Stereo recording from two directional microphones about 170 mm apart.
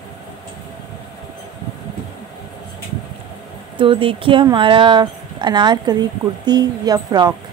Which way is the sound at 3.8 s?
30° right (ahead or behind).